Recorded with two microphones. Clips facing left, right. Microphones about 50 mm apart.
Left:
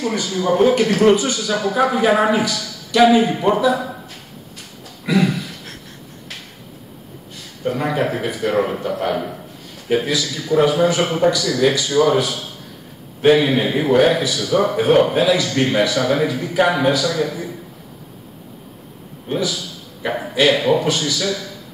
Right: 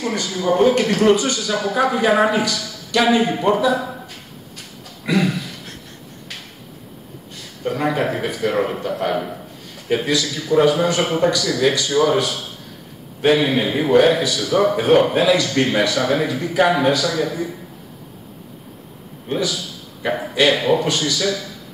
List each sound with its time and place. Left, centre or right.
0.4 s a man's voice: centre
5.0 s a sound: centre
7.6 s a man's voice: centre
13.2 s a man's voice: centre
19.2 s a man's voice: centre